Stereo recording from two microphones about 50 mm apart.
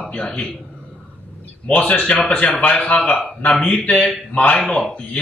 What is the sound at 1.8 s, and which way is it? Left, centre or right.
Speech, left.